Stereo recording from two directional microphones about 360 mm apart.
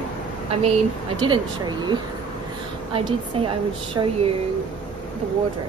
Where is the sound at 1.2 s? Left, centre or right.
Centre.